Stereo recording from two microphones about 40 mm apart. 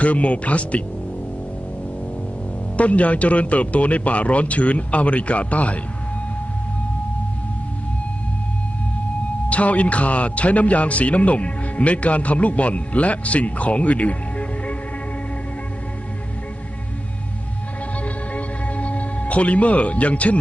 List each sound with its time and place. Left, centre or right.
0.0 s a man's voice: left
2.8 s a man's voice: left
9.5 s a man's voice: left
18.0 s music: left